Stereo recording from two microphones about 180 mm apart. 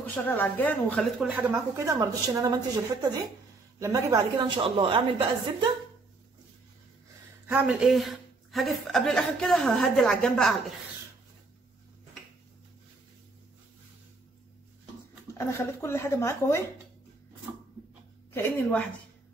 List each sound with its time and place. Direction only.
0.0 s speech: 10° left (ahead or behind)
1.2 s a woman's voice: 10° right (ahead or behind); by 5.3 s 25° right (ahead or behind)
7.4 s a woman's voice: 5° right (ahead or behind)
15.3 s speech: 15° left (ahead or behind)
18.3 s speech: 10° left (ahead or behind)